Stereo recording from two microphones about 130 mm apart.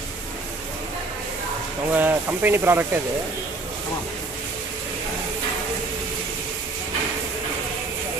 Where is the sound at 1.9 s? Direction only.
15° right (ahead or behind).